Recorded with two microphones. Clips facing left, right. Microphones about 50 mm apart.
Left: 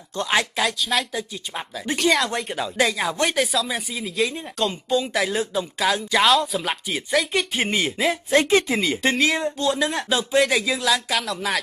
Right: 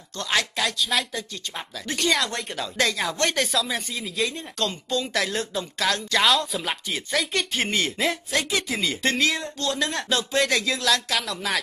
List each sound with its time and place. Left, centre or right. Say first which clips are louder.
0.1 s speech: left 3 dB; centre
0.7 s speech: left 2 dB; centre
6.2 s speech: left 3 dB; centre
8.3 s speech: left 7 dB; left
9.1 s speech: left 3 dB; centre